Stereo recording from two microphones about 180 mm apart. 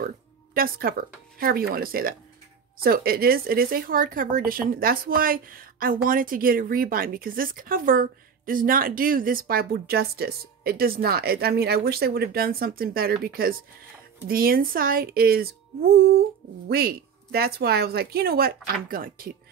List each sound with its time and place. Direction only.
0.6 s speech: 55° right (ahead or behind)